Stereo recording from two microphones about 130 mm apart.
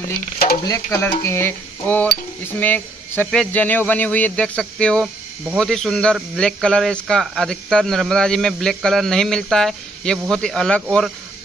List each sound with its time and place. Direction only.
0.7 s a man's voice: 20° left (ahead or behind); by 11.1 s 5° left (ahead or behind)